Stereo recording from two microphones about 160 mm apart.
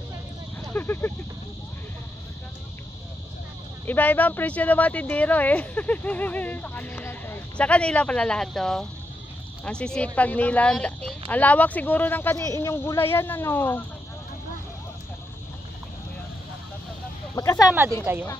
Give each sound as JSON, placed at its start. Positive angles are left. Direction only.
{"t": 0.7, "sound": "speech", "side_deg": 15}
{"t": 3.8, "sound": "speech", "side_deg": 10}
{"t": 17.4, "sound": "speech", "side_deg": 20}
{"t": 18.1, "sound": "speech", "side_deg": -15}